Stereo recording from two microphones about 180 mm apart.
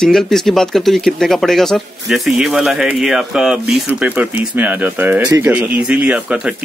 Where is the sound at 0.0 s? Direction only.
5° left (ahead or behind).